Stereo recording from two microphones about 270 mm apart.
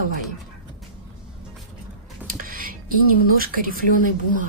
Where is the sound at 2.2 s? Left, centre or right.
Right.